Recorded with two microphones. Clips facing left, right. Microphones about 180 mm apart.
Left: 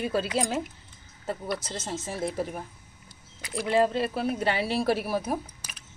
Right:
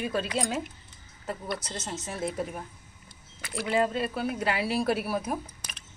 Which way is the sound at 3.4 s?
15° left (ahead or behind).